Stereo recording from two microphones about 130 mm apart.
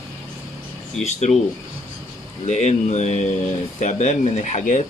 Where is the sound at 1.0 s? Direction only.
60° left (ahead or behind).